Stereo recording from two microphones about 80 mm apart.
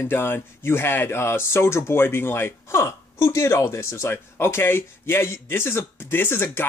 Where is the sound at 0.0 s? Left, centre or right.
Left.